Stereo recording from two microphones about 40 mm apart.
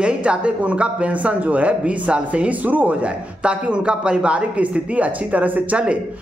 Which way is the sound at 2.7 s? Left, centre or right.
Right.